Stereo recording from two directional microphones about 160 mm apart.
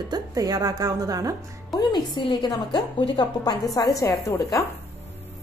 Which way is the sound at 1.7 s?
25° left (ahead or behind).